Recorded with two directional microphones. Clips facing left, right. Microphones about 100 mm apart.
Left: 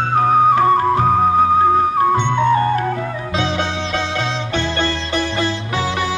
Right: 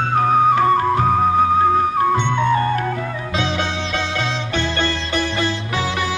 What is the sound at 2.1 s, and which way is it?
Music, 30° left (ahead or behind).